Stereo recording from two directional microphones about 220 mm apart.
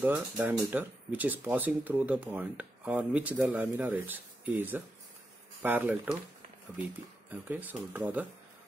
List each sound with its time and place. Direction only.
0.0 s speech: 10° right (ahead or behind)
7.4 s speech: 10° right (ahead or behind)